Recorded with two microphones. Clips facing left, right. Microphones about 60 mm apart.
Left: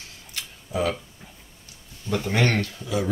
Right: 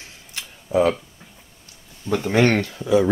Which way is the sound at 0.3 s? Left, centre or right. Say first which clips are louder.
Right 8 dB; right.